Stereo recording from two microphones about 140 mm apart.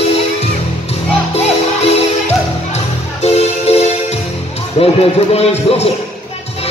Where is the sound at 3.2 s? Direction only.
50° left (ahead or behind).